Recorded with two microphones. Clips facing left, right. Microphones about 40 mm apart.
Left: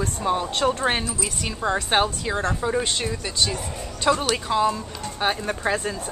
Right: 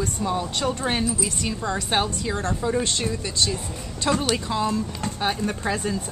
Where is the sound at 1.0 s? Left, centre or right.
Centre.